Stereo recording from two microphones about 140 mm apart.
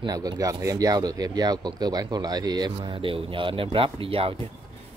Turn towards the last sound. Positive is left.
turn(degrees=-40)  # may be behind; listen again after turning